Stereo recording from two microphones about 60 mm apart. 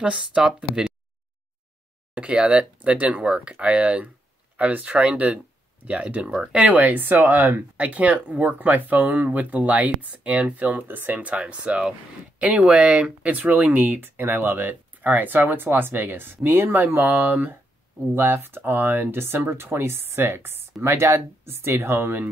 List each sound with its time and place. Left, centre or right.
0.0 s speech: centre
2.1 s speech: centre; by 7.6 s right
7.7 s speech: right